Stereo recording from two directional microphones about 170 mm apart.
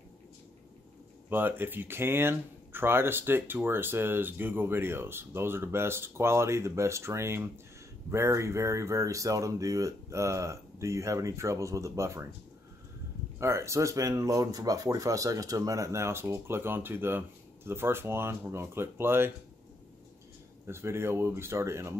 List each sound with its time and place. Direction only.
1.3 s speech: 10° right (ahead or behind)
13.4 s speech: 15° right (ahead or behind)
20.6 s speech: 15° right (ahead or behind)